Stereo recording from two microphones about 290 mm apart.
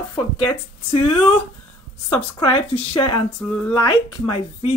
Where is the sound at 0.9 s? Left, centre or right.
Left.